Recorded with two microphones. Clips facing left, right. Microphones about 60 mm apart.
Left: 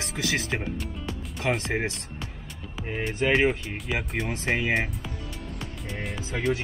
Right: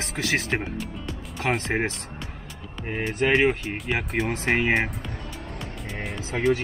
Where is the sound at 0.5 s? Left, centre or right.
Right.